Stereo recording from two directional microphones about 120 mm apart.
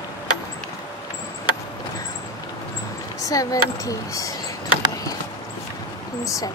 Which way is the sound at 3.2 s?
30° left (ahead or behind).